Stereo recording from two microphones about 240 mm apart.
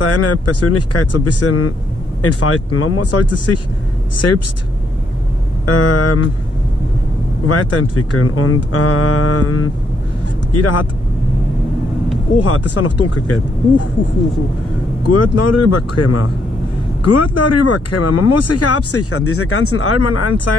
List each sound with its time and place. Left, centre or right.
0.0 s speech: left
5.7 s speech: left
7.4 s speech: left
10.5 s speech: left
12.4 s speech: left
15.0 s speech: left